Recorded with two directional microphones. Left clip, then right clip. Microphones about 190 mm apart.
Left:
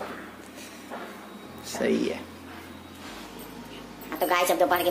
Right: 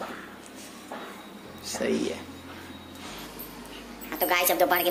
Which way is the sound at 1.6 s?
15° left (ahead or behind).